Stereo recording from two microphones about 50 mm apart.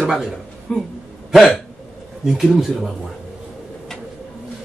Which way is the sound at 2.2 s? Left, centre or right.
Centre.